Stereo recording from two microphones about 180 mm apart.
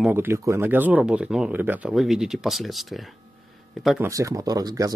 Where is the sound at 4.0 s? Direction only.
20° right (ahead or behind).